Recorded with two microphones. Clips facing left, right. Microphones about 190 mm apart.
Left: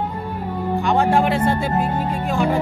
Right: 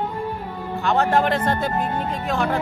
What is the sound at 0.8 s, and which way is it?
Speech, 10° left (ahead or behind).